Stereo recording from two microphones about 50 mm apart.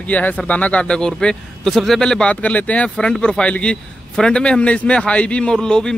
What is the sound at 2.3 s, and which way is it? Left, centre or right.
A man's voice, left.